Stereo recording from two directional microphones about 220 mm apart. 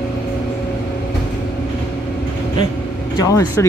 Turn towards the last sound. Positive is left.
turn(degrees=15)  # may be behind; listen again after turning